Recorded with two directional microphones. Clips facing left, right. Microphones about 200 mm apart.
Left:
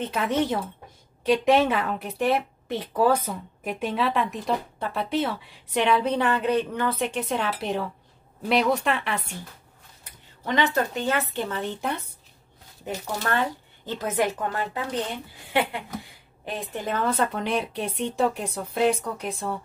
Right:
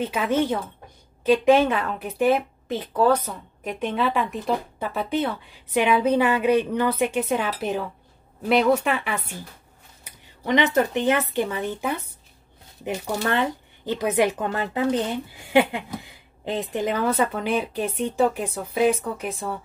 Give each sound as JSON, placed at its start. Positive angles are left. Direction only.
{"t": 0.0, "sound": "a woman's voice", "side_deg": 0}
{"t": 10.4, "sound": "speech", "side_deg": -20}
{"t": 16.4, "sound": "a woman's voice", "side_deg": -20}